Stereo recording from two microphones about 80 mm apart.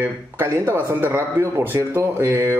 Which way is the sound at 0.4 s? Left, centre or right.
Right.